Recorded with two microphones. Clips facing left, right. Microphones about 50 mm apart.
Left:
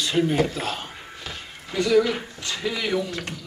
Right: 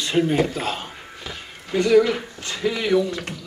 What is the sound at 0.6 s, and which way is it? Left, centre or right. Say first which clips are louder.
A man's voice: right 2 dB; right.